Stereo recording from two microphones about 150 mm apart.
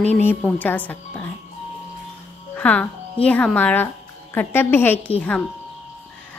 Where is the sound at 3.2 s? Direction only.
10° left (ahead or behind).